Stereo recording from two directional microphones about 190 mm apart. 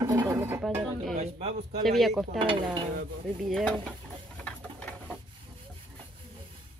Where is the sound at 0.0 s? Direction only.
15° right (ahead or behind).